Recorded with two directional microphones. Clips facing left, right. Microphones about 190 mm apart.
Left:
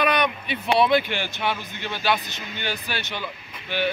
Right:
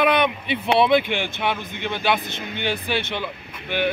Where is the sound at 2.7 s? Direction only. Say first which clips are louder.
Right 6 dB; 25° right (ahead or behind).